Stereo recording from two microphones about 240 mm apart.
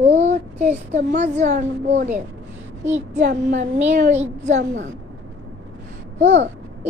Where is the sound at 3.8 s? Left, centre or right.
Right.